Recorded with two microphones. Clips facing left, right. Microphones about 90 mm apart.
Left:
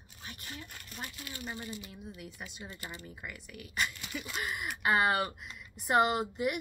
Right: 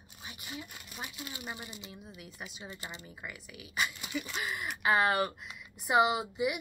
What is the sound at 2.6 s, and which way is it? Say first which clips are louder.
Speech: even; 20° right (ahead or behind).